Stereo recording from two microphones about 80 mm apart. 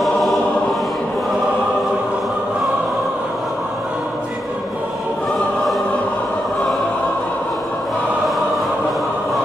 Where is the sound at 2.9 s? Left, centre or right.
Centre.